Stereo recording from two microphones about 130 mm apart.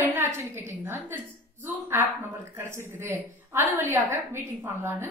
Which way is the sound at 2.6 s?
20° right (ahead or behind).